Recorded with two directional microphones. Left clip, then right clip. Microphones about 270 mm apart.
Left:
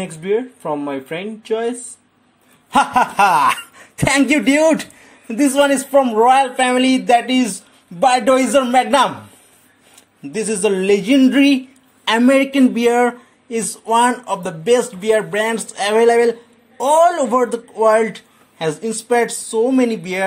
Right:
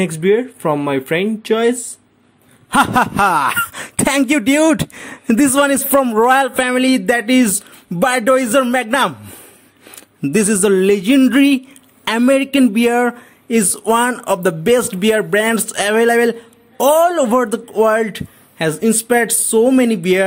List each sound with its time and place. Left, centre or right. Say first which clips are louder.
0.0 s speech: right 5 dB; right
2.7 s speech: right 1 dB; right
5.4 s speech: even; right
10.2 s speech: right 4 dB; right